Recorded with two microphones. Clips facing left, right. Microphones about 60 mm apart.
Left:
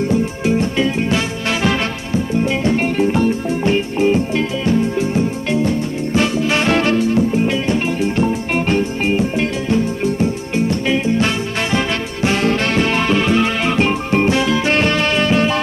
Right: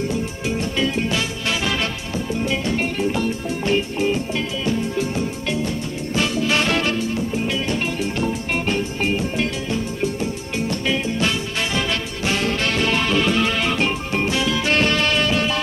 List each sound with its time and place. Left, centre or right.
0.1 s music: left
9.0 s music: left
13.8 s music: left